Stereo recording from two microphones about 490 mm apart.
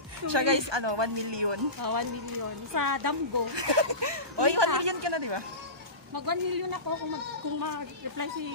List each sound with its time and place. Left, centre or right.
0.3 s a woman's voice: right
1.8 s a woman's voice: right
3.5 s a woman's voice: right
6.1 s a man's voice: right